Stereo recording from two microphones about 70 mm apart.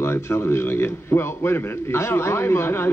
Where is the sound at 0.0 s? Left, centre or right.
Left.